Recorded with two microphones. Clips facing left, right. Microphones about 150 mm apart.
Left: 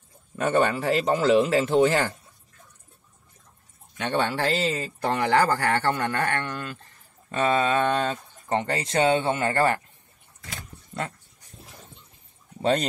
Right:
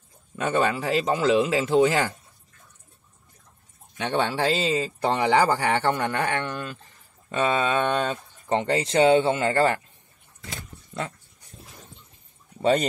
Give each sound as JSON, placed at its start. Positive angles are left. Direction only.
{"t": 0.5, "sound": "speech", "side_deg": 0}
{"t": 4.0, "sound": "speech", "side_deg": -15}